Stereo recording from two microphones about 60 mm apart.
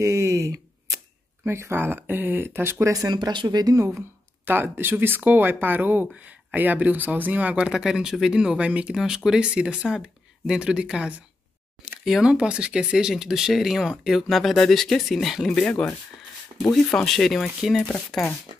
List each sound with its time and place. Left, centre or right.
0.0 s speech: right
1.4 s speech: right
3.6 s speech: right
4.5 s speech: right
7.5 s speech: centre
16.7 s speech: centre